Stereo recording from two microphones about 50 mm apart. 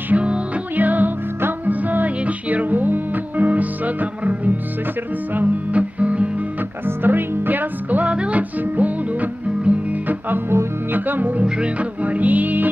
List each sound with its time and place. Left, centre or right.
0.1 s music: right
0.7 s music: right
7.0 s music: right
9.7 s guitar: right
10.9 s music: right
11.4 s music: right